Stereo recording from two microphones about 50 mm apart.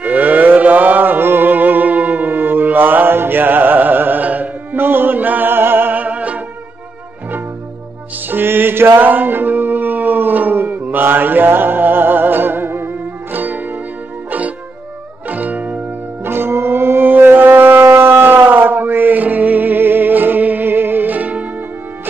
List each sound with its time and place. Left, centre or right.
0.0 s music: right
4.7 s music: right
8.3 s music: right
15.2 s music: right
16.3 s shofar: right